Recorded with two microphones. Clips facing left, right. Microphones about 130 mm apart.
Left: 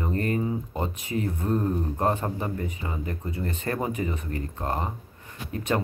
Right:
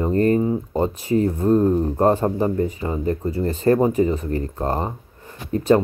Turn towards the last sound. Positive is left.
turn(degrees=-35)  # may be behind; listen again after turning